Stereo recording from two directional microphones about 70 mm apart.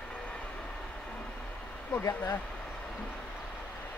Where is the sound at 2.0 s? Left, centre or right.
Left.